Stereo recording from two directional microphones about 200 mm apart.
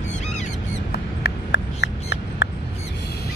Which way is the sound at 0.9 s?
60° left (ahead or behind).